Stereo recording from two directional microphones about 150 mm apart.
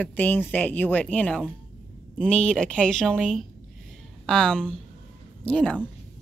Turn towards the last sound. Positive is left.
turn(degrees=10)  # may be behind; listen again after turning